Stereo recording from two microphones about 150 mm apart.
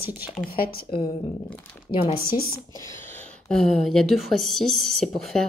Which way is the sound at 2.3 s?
85° left.